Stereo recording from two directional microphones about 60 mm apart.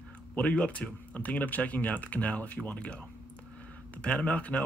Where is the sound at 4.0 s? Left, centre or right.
Left.